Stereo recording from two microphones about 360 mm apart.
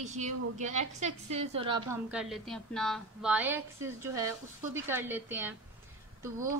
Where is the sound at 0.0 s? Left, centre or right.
Centre.